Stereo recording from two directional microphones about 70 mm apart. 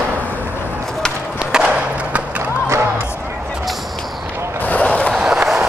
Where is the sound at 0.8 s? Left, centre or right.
Centre.